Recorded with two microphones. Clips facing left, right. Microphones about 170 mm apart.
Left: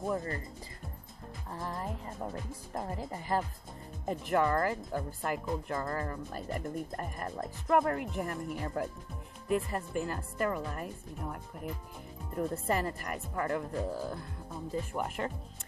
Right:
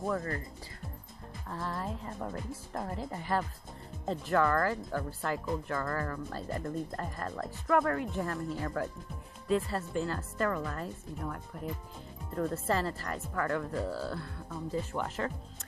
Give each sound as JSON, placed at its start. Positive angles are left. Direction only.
{"t": 0.1, "sound": "speech", "side_deg": 20}
{"t": 1.5, "sound": "a woman's voice", "side_deg": 20}
{"t": 12.4, "sound": "a woman's voice", "side_deg": 15}